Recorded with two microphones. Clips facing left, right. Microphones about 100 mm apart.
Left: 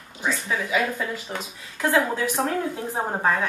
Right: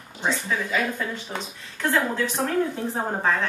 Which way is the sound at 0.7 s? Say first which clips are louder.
Left 1 dB; 5° left (ahead or behind).